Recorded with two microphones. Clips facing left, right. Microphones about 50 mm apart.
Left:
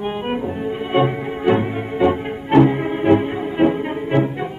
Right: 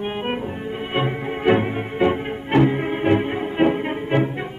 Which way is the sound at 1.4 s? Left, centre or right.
Right.